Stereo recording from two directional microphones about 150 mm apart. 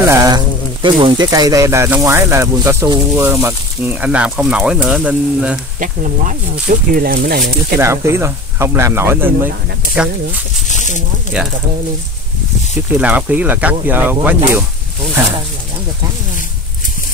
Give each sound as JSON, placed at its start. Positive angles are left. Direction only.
{"t": 0.0, "sound": "a sound", "side_deg": -20}
{"t": 0.8, "sound": "speech", "side_deg": -35}
{"t": 5.8, "sound": "speech", "side_deg": -60}
{"t": 6.7, "sound": "speech", "side_deg": -80}
{"t": 7.8, "sound": "speech", "side_deg": -20}
{"t": 11.3, "sound": "speech", "side_deg": -10}
{"t": 12.9, "sound": "speech", "side_deg": -10}